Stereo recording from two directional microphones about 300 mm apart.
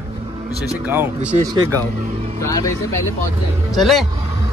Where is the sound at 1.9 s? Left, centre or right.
Right.